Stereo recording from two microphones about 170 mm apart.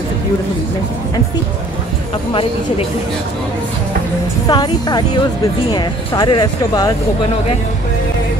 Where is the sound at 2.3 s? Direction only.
30° left (ahead or behind).